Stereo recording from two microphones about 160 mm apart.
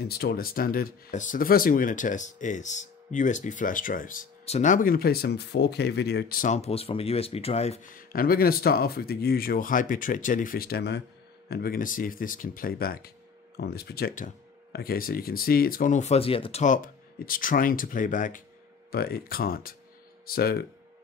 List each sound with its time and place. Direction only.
0.0 s speech: 75° left (ahead or behind)
6.5 s speech: 40° left (ahead or behind)
7.8 s speech: 65° left (ahead or behind)
13.6 s speech: 85° left; by 16.6 s 35° left (ahead or behind)
16.6 s speech: 60° left (ahead or behind)
18.9 s speech: 75° left (ahead or behind)